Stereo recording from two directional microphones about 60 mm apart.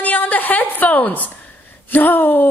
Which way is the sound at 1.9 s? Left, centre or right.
Left.